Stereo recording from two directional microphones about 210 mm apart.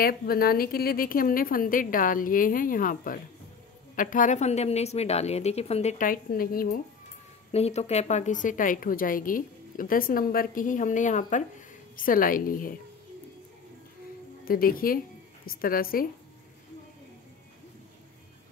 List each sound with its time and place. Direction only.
0.0 s a woman's voice: 45° left (ahead or behind)
7.5 s a woman's voice: 30° left (ahead or behind)
14.4 s a woman's voice: 45° left (ahead or behind)